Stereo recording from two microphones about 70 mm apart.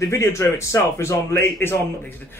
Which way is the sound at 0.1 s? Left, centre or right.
Left.